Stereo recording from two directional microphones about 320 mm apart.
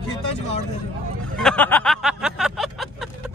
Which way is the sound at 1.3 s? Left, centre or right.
Centre.